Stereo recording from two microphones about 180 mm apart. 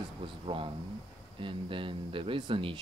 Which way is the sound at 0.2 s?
30° right (ahead or behind).